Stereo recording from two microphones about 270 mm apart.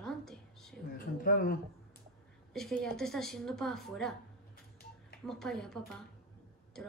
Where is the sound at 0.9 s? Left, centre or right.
Left.